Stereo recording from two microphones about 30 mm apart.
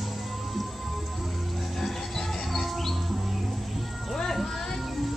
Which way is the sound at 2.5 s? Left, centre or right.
Centre.